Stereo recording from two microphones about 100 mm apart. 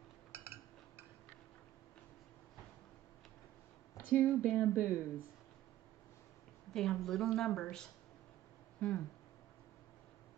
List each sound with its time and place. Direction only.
4.1 s speech: 15° left (ahead or behind)
4.6 s speech: 15° right (ahead or behind)
6.7 s a woman's voice: 5° left (ahead or behind)
8.7 s a sound: 10° left (ahead or behind)